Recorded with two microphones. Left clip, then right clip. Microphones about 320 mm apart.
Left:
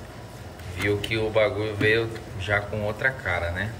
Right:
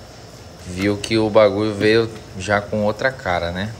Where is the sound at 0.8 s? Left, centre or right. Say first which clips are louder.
Right 6 dB; centre.